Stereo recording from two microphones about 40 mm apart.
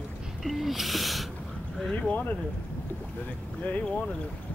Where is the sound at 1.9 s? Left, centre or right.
Left.